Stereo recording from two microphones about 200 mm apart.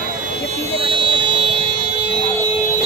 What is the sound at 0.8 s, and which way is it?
Vehicle, 25° right (ahead or behind).